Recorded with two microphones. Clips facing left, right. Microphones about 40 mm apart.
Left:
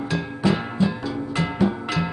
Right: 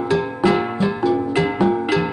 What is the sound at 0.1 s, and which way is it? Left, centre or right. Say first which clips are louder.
Music: right 6 dB; right.